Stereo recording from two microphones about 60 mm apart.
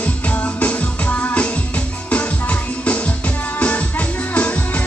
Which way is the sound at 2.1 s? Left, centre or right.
Left.